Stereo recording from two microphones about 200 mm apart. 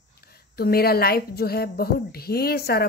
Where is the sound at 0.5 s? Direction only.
50° left (ahead or behind).